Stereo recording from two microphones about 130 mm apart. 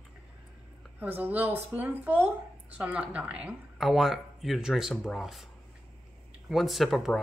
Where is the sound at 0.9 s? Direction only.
15° right (ahead or behind).